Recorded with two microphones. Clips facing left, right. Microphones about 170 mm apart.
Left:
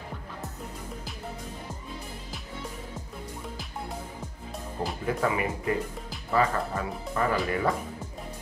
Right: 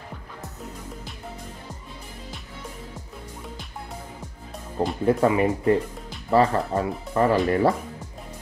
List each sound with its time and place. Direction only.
5.0 s speech: 30° right (ahead or behind)